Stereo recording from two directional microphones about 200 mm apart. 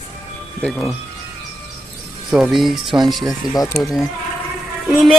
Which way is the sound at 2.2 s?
5° right (ahead or behind).